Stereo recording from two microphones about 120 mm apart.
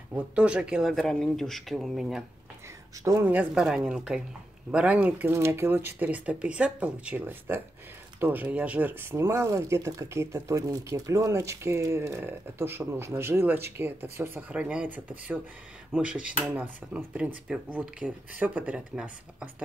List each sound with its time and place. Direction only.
0.4 s speech: 10° right (ahead or behind)
3.0 s speech: 30° right (ahead or behind)
3.3 s speech: 10° right (ahead or behind)